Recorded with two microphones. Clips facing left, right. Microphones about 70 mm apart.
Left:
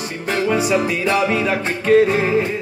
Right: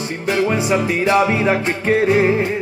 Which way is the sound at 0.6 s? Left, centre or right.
Right.